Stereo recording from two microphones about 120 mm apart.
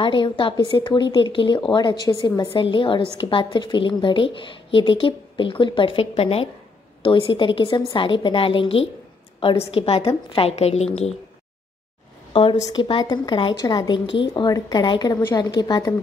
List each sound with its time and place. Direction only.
0.0 s a woman's voice: 45° left (ahead or behind); by 10.9 s 60° left (ahead or behind)
12.3 s a woman's voice: 50° left (ahead or behind)
12.6 s a woman's voice: 40° left (ahead or behind)